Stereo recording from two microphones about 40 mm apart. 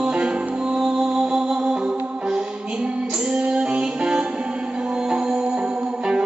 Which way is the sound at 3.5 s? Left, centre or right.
Right.